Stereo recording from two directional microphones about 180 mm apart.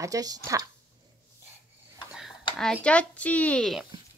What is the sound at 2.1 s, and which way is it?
Speech, centre (ahead or behind).